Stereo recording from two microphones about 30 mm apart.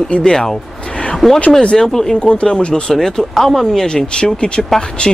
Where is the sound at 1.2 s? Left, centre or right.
Centre.